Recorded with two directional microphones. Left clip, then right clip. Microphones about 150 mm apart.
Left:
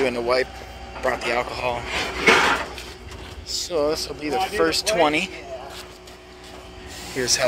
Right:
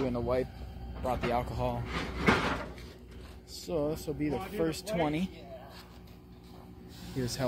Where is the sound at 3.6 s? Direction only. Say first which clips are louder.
Left 10 dB; 15° right (ahead or behind).